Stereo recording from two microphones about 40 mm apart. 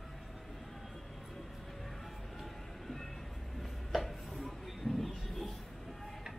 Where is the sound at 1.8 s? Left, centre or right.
Centre.